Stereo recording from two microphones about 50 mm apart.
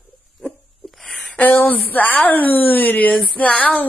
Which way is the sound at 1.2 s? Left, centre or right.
Left.